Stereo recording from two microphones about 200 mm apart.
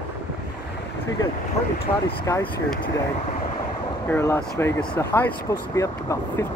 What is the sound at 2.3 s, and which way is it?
Speech, 15° left (ahead or behind).